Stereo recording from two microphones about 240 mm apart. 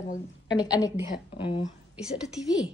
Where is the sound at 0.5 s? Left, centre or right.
Centre.